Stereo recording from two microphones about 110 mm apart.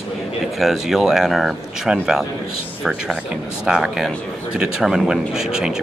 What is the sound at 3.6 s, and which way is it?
Speech, 5° right (ahead or behind).